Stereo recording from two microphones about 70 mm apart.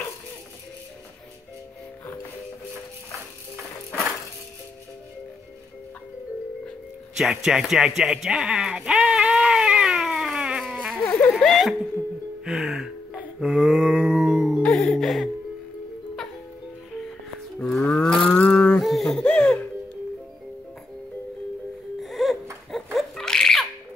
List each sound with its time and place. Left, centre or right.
7.2 s a sound: centre
11.2 s speech: centre
12.4 s music: centre
13.4 s a sound: centre
14.7 s music: centre
17.6 s cattle: centre
17.9 s livestock: centre
18.5 s a sound: centre
18.8 s yodeling: centre
19.2 s music: centre
22.0 s music: centre
22.9 s laughter: centre